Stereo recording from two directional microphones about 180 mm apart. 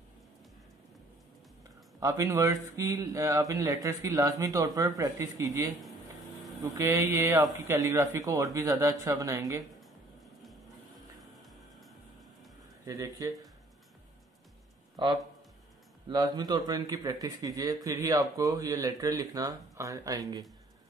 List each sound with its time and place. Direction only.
2.0 s a man's voice: 15° right (ahead or behind)
12.8 s speech: 20° right (ahead or behind)
16.1 s speech: 20° right (ahead or behind)